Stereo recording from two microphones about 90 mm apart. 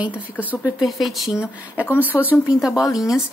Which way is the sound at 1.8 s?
20° left (ahead or behind).